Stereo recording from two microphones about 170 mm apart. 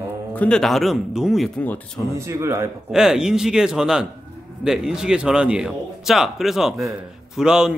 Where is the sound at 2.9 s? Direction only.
5° right (ahead or behind).